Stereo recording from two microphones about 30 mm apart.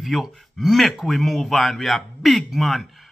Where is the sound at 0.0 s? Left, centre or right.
Centre.